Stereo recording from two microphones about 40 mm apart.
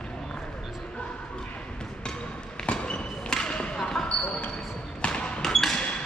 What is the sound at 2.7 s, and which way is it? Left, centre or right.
Basketball bounce, left.